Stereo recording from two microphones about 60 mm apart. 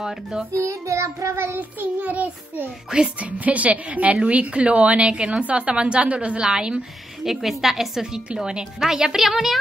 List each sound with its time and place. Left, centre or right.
0.0 s music: centre
0.5 s child singing: right
1.6 s a woman's voice: right; by 9.6 s centre